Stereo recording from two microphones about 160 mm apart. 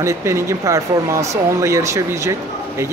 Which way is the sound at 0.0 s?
20° right (ahead or behind).